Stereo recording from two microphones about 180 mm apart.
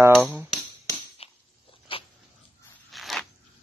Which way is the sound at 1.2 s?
35° left (ahead or behind).